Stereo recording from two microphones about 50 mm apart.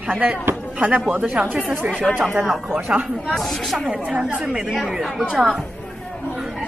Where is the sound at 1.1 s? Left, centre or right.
Centre.